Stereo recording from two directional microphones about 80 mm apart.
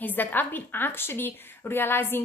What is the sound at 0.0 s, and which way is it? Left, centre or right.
A woman's voice, left.